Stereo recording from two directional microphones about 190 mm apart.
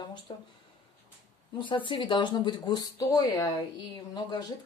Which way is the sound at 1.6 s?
25° left (ahead or behind).